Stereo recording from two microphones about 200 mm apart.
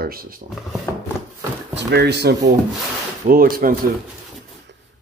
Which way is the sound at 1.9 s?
55° right (ahead or behind).